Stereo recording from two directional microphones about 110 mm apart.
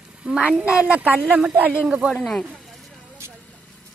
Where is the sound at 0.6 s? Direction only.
10° right (ahead or behind).